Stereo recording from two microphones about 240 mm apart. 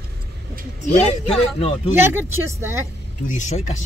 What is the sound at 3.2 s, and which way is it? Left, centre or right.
Speech, left.